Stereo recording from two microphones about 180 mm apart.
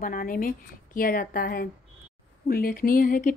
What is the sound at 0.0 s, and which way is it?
A woman's voice, 50° left (ahead or behind).